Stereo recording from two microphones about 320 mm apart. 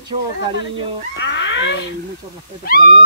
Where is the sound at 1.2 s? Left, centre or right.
Left.